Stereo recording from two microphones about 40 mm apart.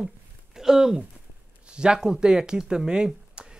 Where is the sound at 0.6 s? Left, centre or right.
Centre.